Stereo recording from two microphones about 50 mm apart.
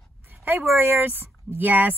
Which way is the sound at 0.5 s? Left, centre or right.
Right.